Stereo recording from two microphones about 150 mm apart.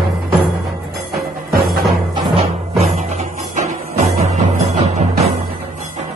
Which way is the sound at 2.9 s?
50° right (ahead or behind).